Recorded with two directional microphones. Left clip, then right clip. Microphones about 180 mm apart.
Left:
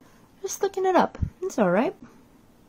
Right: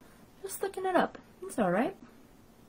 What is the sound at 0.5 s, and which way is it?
Speech, 30° left (ahead or behind).